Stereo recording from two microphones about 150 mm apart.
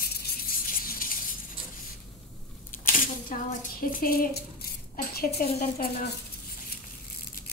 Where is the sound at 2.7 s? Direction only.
65° left (ahead or behind); by 5.5 s 80° left.